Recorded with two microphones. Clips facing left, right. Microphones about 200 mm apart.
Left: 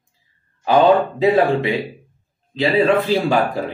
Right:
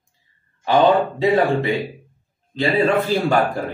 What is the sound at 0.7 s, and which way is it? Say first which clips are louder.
Speech: left 2 dB; 5° left (ahead or behind).